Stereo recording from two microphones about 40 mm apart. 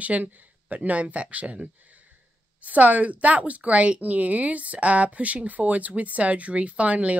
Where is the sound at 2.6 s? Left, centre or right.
Right.